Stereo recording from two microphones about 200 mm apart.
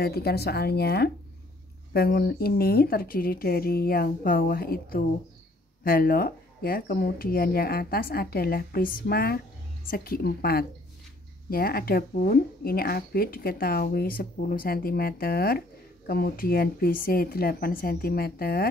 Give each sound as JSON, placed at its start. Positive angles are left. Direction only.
{"t": 0.0, "sound": "speech", "side_deg": 50}